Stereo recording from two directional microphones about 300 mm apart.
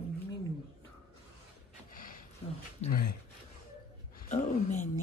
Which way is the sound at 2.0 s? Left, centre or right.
Left.